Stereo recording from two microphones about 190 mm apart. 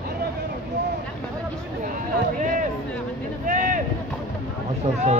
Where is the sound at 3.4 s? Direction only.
45° right (ahead or behind).